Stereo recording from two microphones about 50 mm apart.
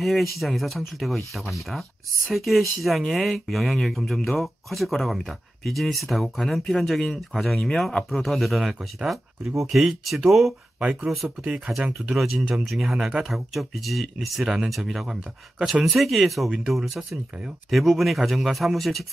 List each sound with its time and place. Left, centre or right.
0.0 s speech: centre
10.8 s speech: right
11.8 s speech: centre